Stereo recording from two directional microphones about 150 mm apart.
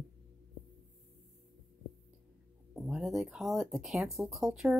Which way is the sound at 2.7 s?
Centre (ahead or behind).